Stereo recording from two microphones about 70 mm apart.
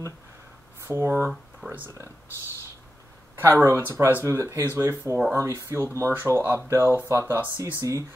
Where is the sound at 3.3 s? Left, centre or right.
Right.